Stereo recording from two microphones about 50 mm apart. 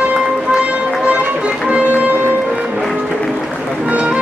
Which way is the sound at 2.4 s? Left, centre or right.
Centre.